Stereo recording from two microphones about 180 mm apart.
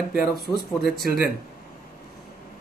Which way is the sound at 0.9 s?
60° right (ahead or behind).